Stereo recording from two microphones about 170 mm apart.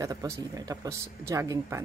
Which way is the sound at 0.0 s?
20° right (ahead or behind).